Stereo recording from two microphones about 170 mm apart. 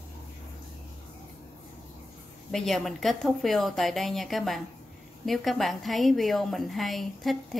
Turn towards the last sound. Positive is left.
turn(degrees=0)  # may be behind; listen again after turning